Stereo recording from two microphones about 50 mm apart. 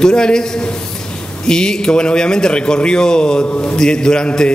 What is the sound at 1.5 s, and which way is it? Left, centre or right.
A man's voice, centre.